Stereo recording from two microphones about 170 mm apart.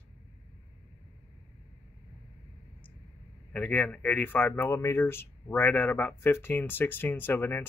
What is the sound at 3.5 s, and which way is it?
Speech, 10° left (ahead or behind).